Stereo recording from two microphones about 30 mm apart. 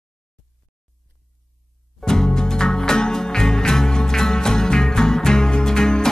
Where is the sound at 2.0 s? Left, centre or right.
Left.